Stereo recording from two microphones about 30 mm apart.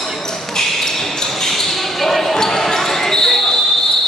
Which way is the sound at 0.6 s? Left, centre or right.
Centre.